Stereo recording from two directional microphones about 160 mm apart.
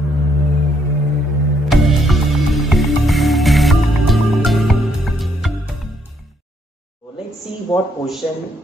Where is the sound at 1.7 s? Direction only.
Centre (ahead or behind).